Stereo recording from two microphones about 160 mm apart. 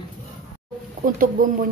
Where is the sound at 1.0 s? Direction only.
60° right (ahead or behind).